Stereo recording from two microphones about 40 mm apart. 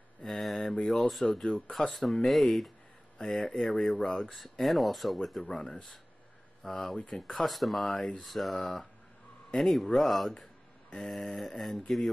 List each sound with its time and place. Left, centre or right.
0.2 s speech: centre
3.2 s speech: centre
4.3 s speech: centre
5.5 s speech: centre